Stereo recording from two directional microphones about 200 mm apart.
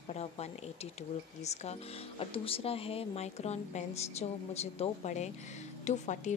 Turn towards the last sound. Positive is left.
turn(degrees=35)  # may be behind; listen again after turning